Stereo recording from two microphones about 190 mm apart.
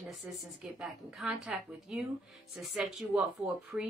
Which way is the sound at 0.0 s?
Centre (ahead or behind).